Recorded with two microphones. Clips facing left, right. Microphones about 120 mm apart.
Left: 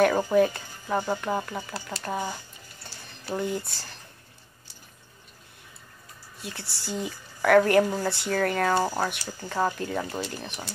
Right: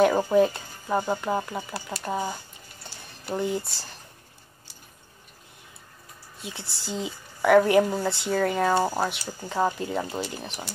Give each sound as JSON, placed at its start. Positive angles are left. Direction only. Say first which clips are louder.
{"t": 0.3, "sound": "speech", "louder": "right 1 dB", "side_deg": -20}
{"t": 6.4, "sound": "speech", "louder": "even", "side_deg": -20}